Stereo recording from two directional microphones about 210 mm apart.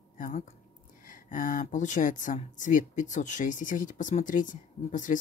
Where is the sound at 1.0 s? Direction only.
40° left (ahead or behind).